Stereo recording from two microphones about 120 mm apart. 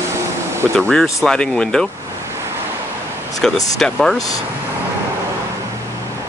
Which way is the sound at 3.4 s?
5° left (ahead or behind).